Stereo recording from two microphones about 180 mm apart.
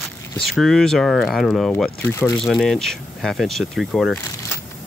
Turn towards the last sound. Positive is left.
turn(degrees=20)  # may be behind; listen again after turning